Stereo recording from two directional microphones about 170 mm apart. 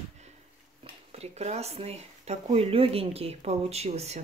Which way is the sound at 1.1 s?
40° right (ahead or behind).